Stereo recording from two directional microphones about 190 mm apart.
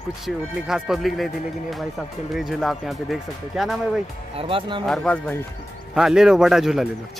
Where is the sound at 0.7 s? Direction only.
5° right (ahead or behind).